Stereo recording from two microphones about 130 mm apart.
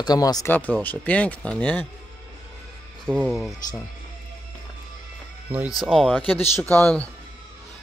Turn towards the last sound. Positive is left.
turn(degrees=10)  # may be behind; listen again after turning